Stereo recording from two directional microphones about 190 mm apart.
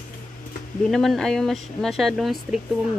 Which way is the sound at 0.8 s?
Centre (ahead or behind).